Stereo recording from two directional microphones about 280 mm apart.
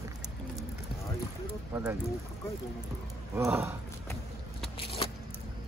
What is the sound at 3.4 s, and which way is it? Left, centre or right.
Speech, centre.